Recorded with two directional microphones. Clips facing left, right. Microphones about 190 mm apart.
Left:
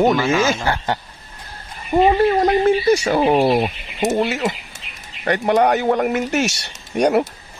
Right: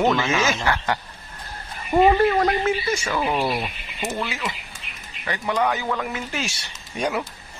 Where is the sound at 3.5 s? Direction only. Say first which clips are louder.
Left 9 dB; 60° left (ahead or behind); by 4.5 s 45° left (ahead or behind).